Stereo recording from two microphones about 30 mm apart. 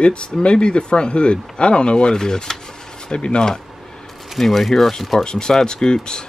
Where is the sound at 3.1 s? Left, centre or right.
Left.